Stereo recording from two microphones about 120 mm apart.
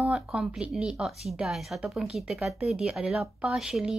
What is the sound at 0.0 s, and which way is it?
Speech, 5° right (ahead or behind).